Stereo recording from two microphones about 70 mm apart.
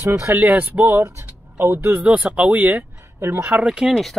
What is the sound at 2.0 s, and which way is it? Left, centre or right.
Speech, centre.